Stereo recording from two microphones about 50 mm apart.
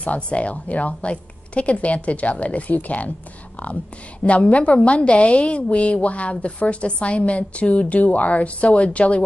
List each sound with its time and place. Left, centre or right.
0.0 s a woman's voice: left
4.2 s a woman's voice: left